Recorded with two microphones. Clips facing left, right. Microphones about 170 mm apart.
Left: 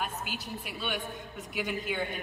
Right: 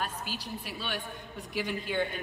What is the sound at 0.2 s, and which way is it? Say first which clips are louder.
Speech: even; 50° left (ahead or behind).